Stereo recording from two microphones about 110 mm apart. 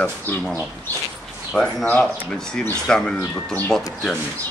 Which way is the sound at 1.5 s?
10° left (ahead or behind).